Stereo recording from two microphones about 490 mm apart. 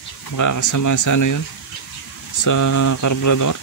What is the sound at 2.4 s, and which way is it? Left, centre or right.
Speech, left.